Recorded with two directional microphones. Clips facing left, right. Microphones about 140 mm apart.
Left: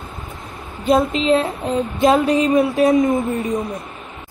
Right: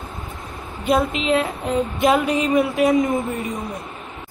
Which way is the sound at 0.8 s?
25° left (ahead or behind).